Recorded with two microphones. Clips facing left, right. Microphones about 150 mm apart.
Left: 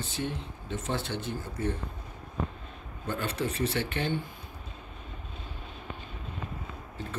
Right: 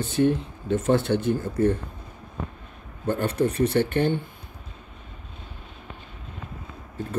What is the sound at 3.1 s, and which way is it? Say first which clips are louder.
Speech: right 8 dB; 55° right (ahead or behind).